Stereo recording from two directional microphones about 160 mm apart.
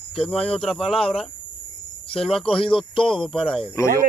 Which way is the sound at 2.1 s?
35° left (ahead or behind).